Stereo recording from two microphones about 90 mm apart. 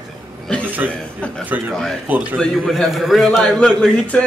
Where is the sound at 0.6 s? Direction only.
20° right (ahead or behind).